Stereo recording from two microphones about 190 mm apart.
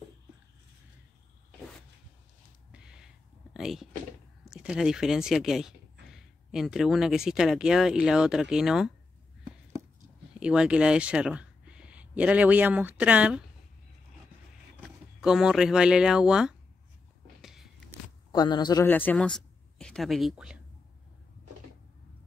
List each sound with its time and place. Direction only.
2.7 s a sound: 5° right (ahead or behind)
3.5 s speech: centre (ahead or behind)
10.4 s speech: 5° right (ahead or behind)
14.8 s speech: centre (ahead or behind)
17.4 s a sound: centre (ahead or behind)
18.3 s speech: 20° left (ahead or behind)
18.9 s speech: 10° left (ahead or behind)